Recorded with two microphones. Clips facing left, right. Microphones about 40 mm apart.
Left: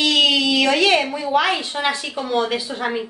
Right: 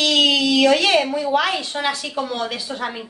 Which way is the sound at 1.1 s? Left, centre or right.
Centre.